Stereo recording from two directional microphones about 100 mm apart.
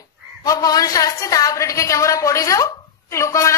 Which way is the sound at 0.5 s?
35° left (ahead or behind).